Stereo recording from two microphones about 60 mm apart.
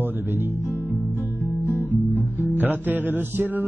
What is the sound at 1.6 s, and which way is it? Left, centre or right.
Guitar, left.